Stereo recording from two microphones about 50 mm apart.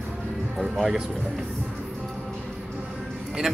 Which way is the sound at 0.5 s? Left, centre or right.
Centre.